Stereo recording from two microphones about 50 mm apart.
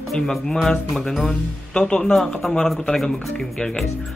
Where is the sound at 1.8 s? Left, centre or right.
Centre.